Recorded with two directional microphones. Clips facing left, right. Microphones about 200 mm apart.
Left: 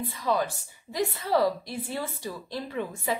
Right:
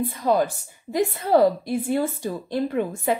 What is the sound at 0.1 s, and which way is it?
A woman's voice, 50° right (ahead or behind).